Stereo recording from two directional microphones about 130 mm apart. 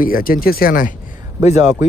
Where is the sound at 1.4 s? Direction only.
65° left (ahead or behind).